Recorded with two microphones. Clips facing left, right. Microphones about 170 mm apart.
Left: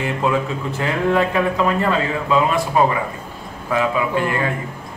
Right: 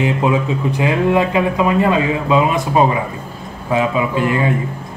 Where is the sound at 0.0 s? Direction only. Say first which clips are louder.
Right 4 dB; 15° right (ahead or behind).